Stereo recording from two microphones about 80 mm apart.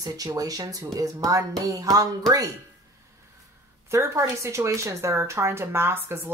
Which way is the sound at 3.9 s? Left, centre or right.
Right.